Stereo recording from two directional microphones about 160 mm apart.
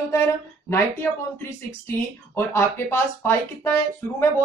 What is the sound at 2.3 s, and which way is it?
A woman's voice, 15° left (ahead or behind).